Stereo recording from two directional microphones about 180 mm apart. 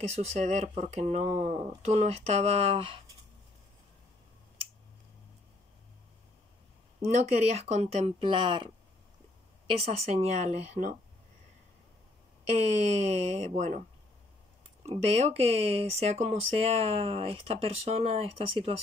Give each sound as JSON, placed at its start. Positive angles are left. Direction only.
{"t": 0.1, "sound": "speech", "side_deg": -40}
{"t": 7.1, "sound": "speech", "side_deg": -40}
{"t": 9.8, "sound": "speech", "side_deg": -35}
{"t": 12.5, "sound": "speech", "side_deg": -40}
{"t": 14.9, "sound": "speech", "side_deg": -35}